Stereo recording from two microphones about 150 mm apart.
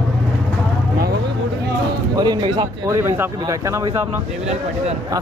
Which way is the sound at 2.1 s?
30° right (ahead or behind).